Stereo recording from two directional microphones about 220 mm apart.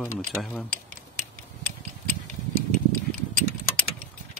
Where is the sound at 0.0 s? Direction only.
5° left (ahead or behind).